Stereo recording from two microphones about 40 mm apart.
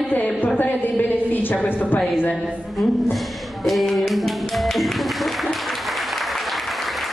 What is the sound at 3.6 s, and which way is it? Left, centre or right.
Music, centre.